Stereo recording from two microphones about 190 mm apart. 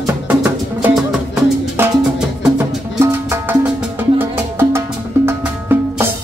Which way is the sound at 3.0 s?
15° right (ahead or behind).